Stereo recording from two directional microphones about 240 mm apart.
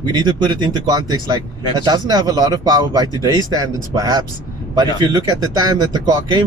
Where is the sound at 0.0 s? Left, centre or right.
Centre.